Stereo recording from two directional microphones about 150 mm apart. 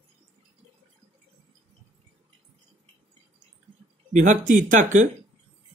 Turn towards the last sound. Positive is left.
turn(degrees=-60)  # may be behind; listen again after turning